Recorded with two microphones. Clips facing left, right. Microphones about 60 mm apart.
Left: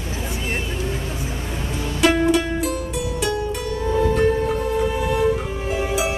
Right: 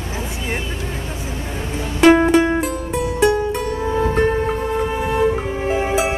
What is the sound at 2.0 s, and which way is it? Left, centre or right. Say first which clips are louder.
Music: right 6 dB; right.